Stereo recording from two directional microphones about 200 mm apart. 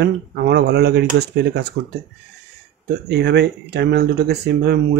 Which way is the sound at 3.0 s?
60° right (ahead or behind).